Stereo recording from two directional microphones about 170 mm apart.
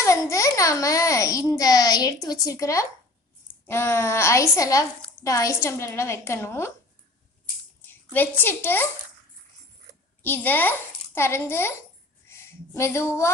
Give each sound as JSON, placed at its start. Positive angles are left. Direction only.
{"t": 0.0, "sound": "a child's voice", "side_deg": 20}
{"t": 7.8, "sound": "a woman's voice", "side_deg": 10}
{"t": 10.2, "sound": "a woman's voice", "side_deg": 10}